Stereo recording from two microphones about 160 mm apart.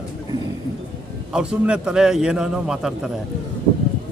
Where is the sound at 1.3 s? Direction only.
5° right (ahead or behind).